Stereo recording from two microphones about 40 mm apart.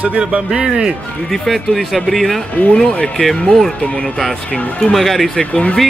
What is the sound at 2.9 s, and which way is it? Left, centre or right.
Speech, left.